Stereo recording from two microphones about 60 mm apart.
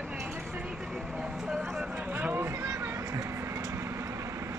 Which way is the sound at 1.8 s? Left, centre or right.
Right.